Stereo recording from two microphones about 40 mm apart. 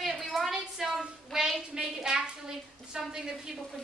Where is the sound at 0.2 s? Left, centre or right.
Centre.